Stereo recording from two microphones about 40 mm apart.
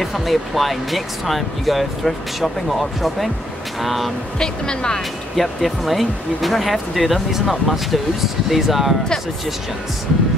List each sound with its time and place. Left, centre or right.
0.0 s speech: centre
4.4 s speech: centre
5.3 s speech: centre